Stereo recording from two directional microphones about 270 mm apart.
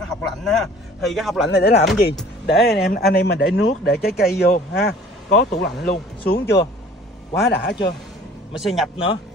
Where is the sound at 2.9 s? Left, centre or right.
Left.